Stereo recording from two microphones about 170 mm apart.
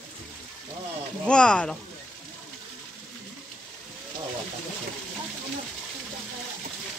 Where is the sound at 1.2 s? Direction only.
5° left (ahead or behind).